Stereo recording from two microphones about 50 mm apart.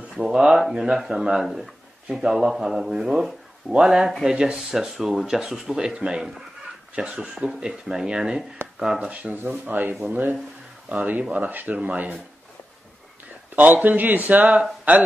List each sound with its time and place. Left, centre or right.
0.2 s speech: centre
0.6 s speech: centre
9.1 s speech: right
13.6 s speech: right